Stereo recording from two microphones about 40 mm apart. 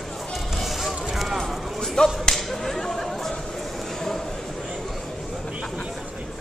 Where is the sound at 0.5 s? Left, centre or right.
Centre.